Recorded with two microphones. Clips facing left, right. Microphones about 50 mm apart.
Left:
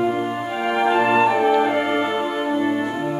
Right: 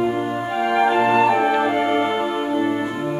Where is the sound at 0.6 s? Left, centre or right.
Centre.